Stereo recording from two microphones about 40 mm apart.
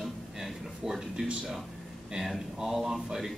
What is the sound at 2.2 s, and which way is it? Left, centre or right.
A man's voice, centre.